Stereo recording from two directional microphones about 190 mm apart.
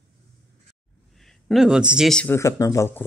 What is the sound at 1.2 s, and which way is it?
Speech, centre (ahead or behind).